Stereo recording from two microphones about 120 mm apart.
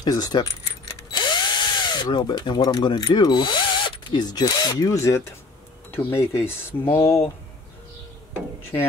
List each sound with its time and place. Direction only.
0.0 s drill: 30° left (ahead or behind)
3.2 s speech: 40° left (ahead or behind); by 7.2 s 20° left (ahead or behind)